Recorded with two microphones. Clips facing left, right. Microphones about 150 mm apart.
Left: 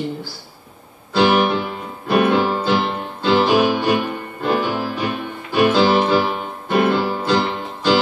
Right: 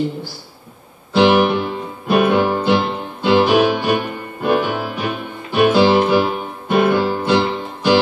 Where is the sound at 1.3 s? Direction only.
15° right (ahead or behind).